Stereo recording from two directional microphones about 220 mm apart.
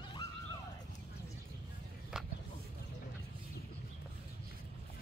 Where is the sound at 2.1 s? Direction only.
5° right (ahead or behind).